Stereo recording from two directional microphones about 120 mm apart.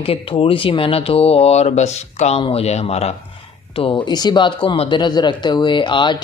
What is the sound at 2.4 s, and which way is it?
Speech, 55° left (ahead or behind).